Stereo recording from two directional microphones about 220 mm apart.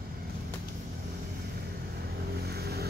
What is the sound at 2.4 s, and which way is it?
Vehicle, 45° right (ahead or behind).